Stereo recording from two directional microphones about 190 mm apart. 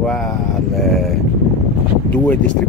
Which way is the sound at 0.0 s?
5° left (ahead or behind).